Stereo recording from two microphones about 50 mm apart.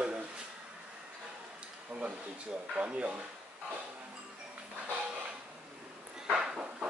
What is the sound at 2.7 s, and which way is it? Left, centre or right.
Speech, right.